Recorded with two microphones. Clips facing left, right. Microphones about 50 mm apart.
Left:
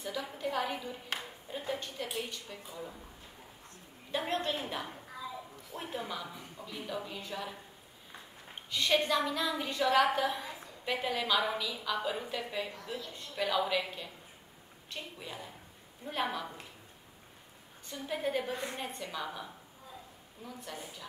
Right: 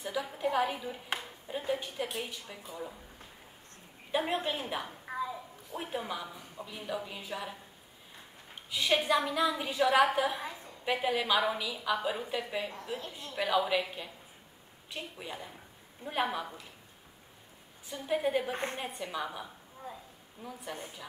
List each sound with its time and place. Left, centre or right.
0.0 s a sound: centre
0.4 s a woman's voice: centre
4.1 s a woman's voice: centre
5.1 s a sound: right
5.8 s a woman's voice: centre
8.6 s a woman's voice: centre
17.8 s a woman's voice: centre
18.5 s a woman's voice: right
18.8 s a woman's voice: centre